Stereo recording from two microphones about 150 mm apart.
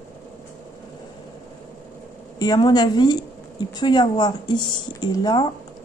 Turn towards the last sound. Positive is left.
turn(degrees=30)  # may be behind; listen again after turning